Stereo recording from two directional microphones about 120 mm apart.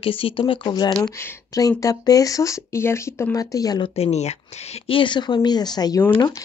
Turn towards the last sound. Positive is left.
turn(degrees=35)  # may be behind; listen again after turning